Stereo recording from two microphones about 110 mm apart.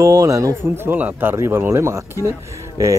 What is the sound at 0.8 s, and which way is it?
Speech, 15° right (ahead or behind).